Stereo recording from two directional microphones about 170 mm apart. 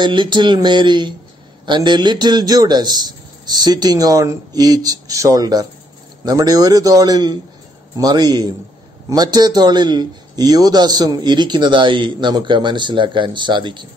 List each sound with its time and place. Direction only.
0.0 s a man's voice: 25° right (ahead or behind)